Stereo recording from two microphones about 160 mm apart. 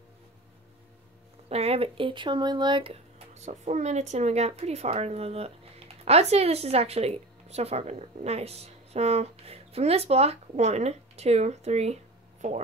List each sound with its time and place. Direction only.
1.5 s a woman's voice: 40° right (ahead or behind)